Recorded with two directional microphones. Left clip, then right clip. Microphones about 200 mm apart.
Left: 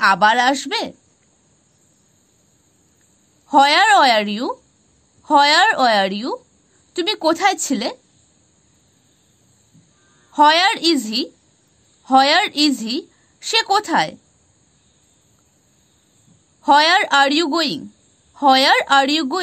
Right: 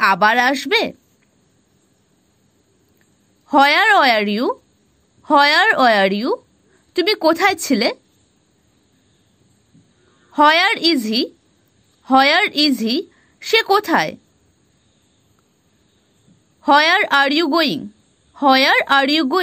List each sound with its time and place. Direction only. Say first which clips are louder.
0.0 s speech: even; 15° right (ahead or behind)
3.4 s speech: even; 15° right (ahead or behind)
10.3 s a woman's voice: even; 15° right (ahead or behind)
16.6 s speech: even; 10° right (ahead or behind)